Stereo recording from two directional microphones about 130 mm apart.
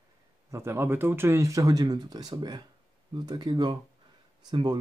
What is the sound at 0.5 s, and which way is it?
Speech, 20° right (ahead or behind).